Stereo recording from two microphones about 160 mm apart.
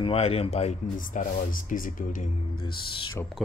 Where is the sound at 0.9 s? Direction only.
60° left (ahead or behind).